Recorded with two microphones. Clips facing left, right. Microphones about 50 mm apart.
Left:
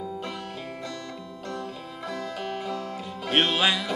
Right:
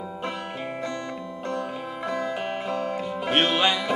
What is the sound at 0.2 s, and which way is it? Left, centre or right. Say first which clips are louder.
Music: right 4 dB; right.